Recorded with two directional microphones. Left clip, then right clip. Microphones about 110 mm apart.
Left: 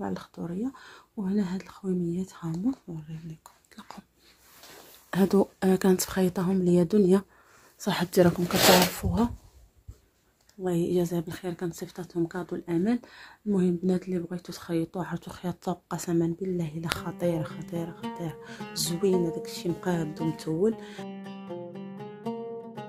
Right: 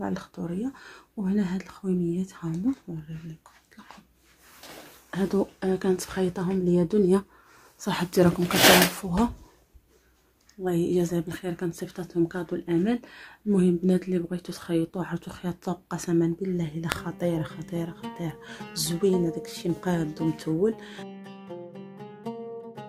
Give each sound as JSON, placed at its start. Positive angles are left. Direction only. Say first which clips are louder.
{"t": 0.0, "sound": "speech", "louder": "right 2 dB", "side_deg": 30}
{"t": 5.1, "sound": "speech", "louder": "left 3 dB", "side_deg": 70}
{"t": 10.6, "sound": "speech", "louder": "right 2 dB", "side_deg": 35}
{"t": 13.5, "sound": "speech", "louder": "right 3 dB", "side_deg": 30}
{"t": 20.1, "sound": "speech", "louder": "right 3 dB", "side_deg": 0}
{"t": 20.3, "sound": "speech", "louder": "even", "side_deg": 30}
{"t": 21.1, "sound": "music", "louder": "left 2 dB", "side_deg": 0}